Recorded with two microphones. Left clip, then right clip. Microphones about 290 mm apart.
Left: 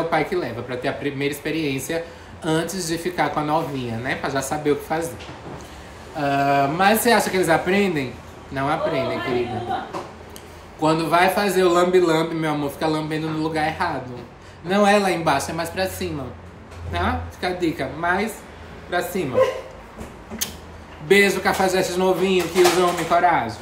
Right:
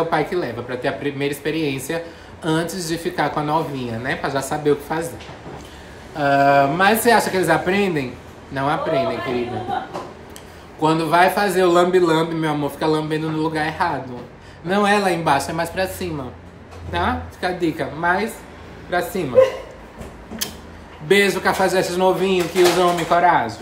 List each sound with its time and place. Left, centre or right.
0.1 s a man's voice: centre
6.1 s a man's voice: centre
10.8 s a man's voice: centre
21.1 s a man's voice: centre